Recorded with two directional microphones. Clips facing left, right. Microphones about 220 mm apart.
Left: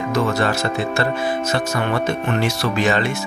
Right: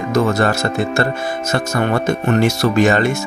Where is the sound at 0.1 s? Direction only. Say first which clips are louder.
Right 4 dB; 45° right (ahead or behind).